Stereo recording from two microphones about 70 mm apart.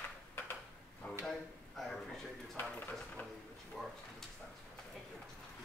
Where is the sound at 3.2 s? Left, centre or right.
Left.